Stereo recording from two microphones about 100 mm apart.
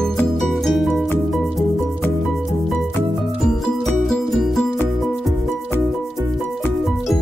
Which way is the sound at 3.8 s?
5° left (ahead or behind).